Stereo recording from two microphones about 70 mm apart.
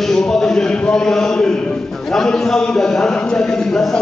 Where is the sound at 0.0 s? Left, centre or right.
Centre.